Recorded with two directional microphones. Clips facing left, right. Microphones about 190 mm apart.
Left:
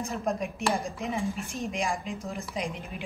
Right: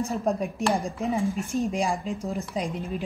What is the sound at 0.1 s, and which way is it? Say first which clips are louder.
Speech: right 4 dB; 35° right (ahead or behind).